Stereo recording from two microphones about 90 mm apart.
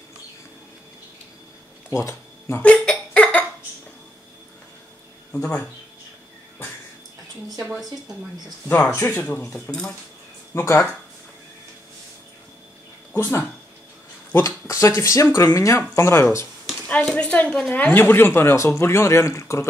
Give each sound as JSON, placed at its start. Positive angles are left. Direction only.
{"t": 1.9, "sound": "speech", "side_deg": 35}
{"t": 2.6, "sound": "a sound", "side_deg": 10}
{"t": 5.3, "sound": "speech", "side_deg": 15}
{"t": 8.6, "sound": "a woman's voice", "side_deg": 25}
{"t": 9.7, "sound": "speech", "side_deg": 5}
{"t": 10.5, "sound": "a woman's voice", "side_deg": 30}
{"t": 13.1, "sound": "speech", "side_deg": 35}
{"t": 16.8, "sound": "a woman's voice", "side_deg": 15}